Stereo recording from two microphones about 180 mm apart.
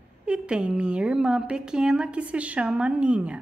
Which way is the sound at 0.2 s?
5° right (ahead or behind).